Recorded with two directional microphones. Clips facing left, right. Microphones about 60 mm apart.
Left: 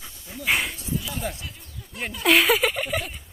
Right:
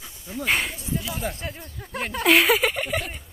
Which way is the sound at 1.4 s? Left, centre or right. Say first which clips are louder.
Right 6 dB; right.